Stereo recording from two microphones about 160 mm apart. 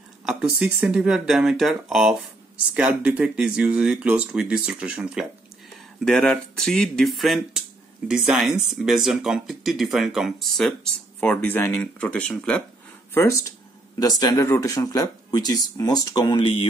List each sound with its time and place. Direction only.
0.2 s speech: 5° right (ahead or behind); by 13.5 s 15° left (ahead or behind)
13.9 s speech: 25° left (ahead or behind)